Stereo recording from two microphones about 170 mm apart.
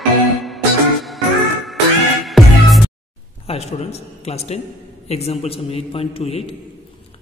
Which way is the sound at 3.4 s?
40° left (ahead or behind).